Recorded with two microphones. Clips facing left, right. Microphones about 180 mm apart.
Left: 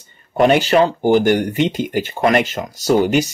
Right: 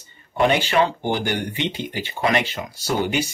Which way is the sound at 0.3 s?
45° left (ahead or behind).